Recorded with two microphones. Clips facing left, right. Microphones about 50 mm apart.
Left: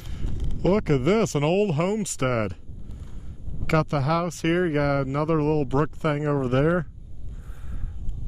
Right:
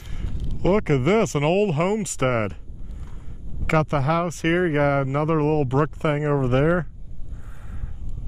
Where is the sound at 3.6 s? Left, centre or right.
Right.